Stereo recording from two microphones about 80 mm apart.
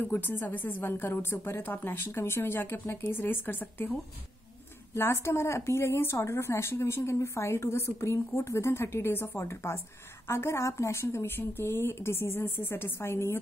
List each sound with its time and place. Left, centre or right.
0.0 s a woman's voice: left
4.9 s a woman's voice: left